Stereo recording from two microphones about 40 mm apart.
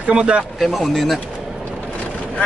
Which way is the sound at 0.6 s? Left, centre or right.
Centre.